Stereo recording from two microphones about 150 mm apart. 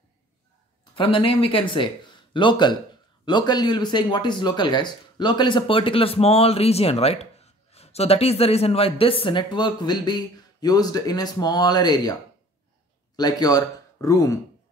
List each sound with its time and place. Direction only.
0.9 s speech: 35° left (ahead or behind)